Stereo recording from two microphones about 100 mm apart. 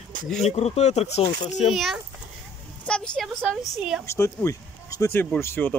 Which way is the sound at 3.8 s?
5° right (ahead or behind).